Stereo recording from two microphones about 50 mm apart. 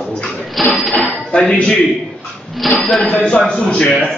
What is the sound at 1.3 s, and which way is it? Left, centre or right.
Speech, centre.